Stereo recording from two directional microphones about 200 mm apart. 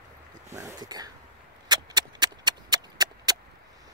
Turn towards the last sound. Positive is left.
turn(degrees=-20)  # may be behind; listen again after turning